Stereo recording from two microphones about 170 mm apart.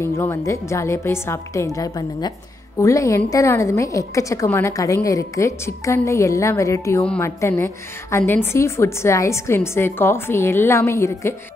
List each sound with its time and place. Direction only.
0.0 s a woman's voice: 15° left (ahead or behind)